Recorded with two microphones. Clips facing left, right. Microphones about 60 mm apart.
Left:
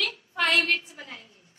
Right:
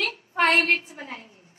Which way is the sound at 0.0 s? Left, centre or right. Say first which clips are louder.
Right 5 dB; right.